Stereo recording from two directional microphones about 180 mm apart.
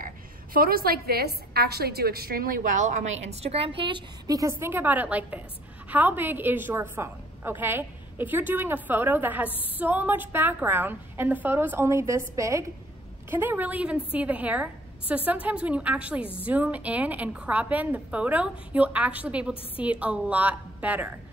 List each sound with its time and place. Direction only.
0.0 s a woman's voice: 55° right (ahead or behind); by 21.1 s 10° right (ahead or behind)